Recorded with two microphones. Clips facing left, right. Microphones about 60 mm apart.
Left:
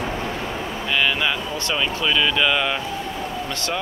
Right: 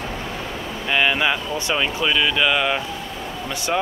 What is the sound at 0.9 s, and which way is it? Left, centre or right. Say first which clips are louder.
Speech: right 2 dB; centre.